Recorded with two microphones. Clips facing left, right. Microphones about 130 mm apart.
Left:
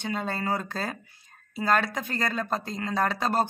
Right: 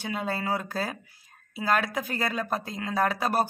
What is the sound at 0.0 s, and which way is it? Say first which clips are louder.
Speech: even; 5° right (ahead or behind).